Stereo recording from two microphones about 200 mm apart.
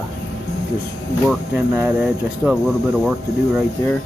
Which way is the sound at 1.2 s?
5° right (ahead or behind).